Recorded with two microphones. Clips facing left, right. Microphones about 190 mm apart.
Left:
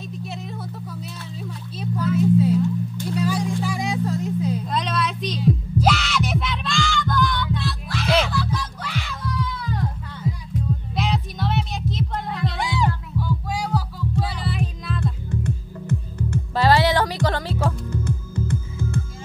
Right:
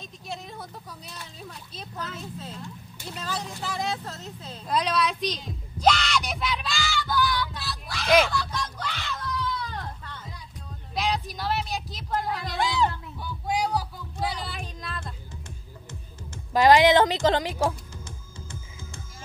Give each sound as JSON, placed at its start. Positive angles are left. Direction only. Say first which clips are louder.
{"t": 0.2, "sound": "vehicle", "louder": "left 1 dB", "side_deg": 0}
{"t": 1.4, "sound": "a sound", "louder": "left 12 dB", "side_deg": 10}
{"t": 3.2, "sound": "music", "louder": "left 10 dB", "side_deg": 10}
{"t": 4.6, "sound": "music", "louder": "even", "side_deg": 0}
{"t": 12.5, "sound": "music", "louder": "right 1 dB", "side_deg": 15}
{"t": 13.2, "sound": "hum", "louder": "even", "side_deg": -20}
{"t": 14.2, "sound": "music", "louder": "left 4 dB", "side_deg": 0}
{"t": 15.4, "sound": "music", "louder": "left 16 dB", "side_deg": 60}
{"t": 16.5, "sound": "music", "louder": "right 2 dB", "side_deg": -15}
{"t": 18.0, "sound": "music", "louder": "left 17 dB", "side_deg": 60}